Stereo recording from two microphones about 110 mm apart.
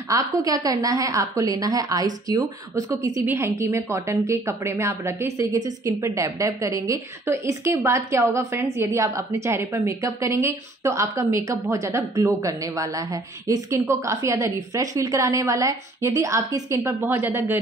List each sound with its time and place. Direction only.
0.1 s a woman's voice: 35° right (ahead or behind)